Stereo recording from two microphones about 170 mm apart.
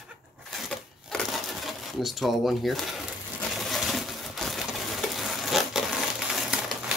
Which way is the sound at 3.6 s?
Centre (ahead or behind).